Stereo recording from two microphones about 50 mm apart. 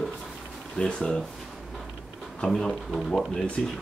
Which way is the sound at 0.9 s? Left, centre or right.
Centre.